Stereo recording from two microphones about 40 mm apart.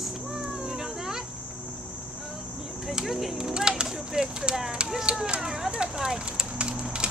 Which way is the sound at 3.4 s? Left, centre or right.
Centre.